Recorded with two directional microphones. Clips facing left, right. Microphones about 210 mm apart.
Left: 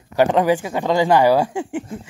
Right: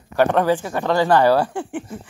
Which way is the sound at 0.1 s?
10° left (ahead or behind).